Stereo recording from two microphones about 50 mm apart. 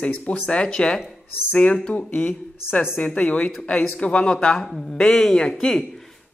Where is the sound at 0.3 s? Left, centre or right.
Left.